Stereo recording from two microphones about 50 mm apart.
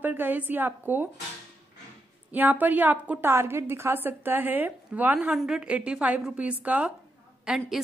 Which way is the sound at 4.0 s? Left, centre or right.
Right.